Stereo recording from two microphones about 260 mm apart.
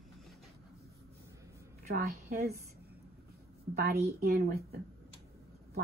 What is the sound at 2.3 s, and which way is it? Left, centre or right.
Speech, right.